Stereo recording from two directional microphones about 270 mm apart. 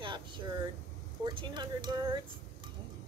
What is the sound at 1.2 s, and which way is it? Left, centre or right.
Speech, centre.